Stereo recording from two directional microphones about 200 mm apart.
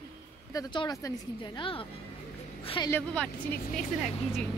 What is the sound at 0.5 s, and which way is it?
Speech, 20° left (ahead or behind).